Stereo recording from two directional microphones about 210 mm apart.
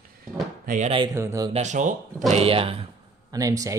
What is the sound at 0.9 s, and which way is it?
Speech, 15° right (ahead or behind).